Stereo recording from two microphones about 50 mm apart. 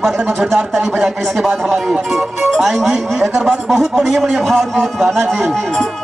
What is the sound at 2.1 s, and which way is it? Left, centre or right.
Music, centre.